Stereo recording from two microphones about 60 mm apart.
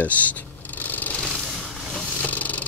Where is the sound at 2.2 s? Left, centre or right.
Left.